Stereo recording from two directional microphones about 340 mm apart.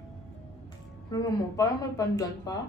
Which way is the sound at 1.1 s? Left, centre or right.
Centre.